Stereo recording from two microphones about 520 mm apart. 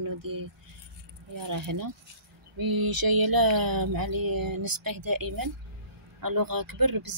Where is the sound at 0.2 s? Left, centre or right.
Right.